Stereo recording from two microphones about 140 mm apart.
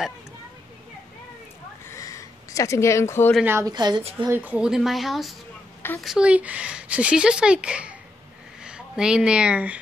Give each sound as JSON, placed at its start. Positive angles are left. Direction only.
{"t": 1.9, "sound": "a sound", "side_deg": 25}
{"t": 3.4, "sound": "a woman's voice", "side_deg": -20}
{"t": 3.7, "sound": "a woman's voice", "side_deg": -30}
{"t": 4.3, "sound": "a woman's voice", "side_deg": -10}